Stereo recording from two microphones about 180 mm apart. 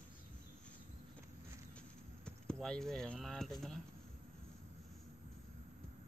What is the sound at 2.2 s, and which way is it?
Speech, 5° left (ahead or behind).